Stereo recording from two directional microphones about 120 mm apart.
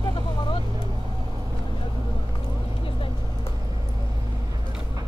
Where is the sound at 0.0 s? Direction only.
45° left (ahead or behind).